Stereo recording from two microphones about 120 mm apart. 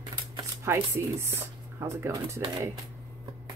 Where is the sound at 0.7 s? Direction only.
20° right (ahead or behind).